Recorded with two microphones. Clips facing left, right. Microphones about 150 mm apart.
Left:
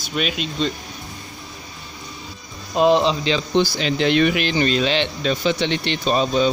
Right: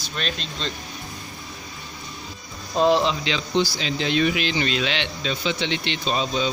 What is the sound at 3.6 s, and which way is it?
Speech, 60° left (ahead or behind).